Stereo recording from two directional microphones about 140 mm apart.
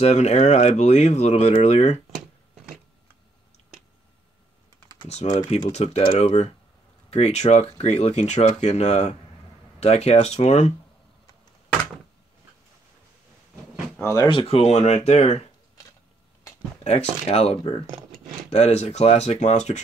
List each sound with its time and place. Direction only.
0.0 s speech: 55° left (ahead or behind)
5.0 s speech: 50° left (ahead or behind)
14.0 s speech: 20° left (ahead or behind)
14.3 s speech: 40° left (ahead or behind)
16.8 s speech: 50° left (ahead or behind)